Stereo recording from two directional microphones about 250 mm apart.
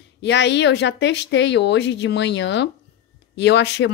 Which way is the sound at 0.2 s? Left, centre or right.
Left.